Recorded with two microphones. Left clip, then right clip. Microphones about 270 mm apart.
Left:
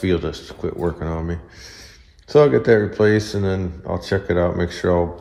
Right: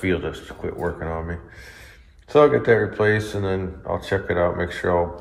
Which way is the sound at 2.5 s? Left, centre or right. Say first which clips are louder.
Left 2 dB; left.